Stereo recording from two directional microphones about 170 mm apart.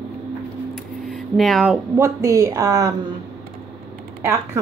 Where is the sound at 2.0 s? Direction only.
15° right (ahead or behind).